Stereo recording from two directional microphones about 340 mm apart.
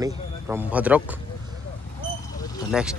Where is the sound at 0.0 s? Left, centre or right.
Centre.